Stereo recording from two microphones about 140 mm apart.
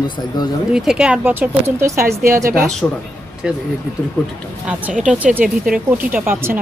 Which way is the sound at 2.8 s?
10° left (ahead or behind).